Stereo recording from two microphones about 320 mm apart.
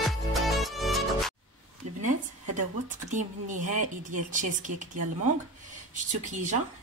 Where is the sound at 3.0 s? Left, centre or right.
Right.